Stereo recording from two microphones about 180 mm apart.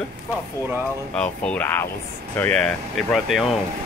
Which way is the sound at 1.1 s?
5° left (ahead or behind).